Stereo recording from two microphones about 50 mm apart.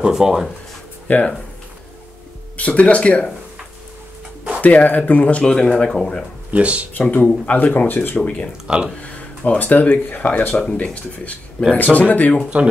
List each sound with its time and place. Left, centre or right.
0.1 s speech: centre
1.0 s speech: left
2.5 s speech: left
4.6 s speech: left; by 6.2 s centre
6.5 s speech: right
6.9 s speech: left
7.2 s speech: left
7.5 s speech: left
8.6 s speech: right
9.0 s speech: left
10.6 s speech: centre